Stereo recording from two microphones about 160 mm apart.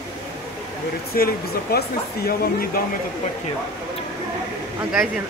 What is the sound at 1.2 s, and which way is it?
Speech, 65° left (ahead or behind).